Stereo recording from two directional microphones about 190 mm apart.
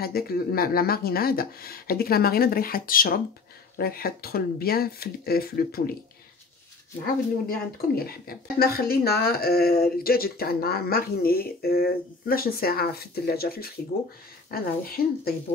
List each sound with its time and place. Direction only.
0.0 s speech: 55° left (ahead or behind)
7.4 s speech: 50° left (ahead or behind)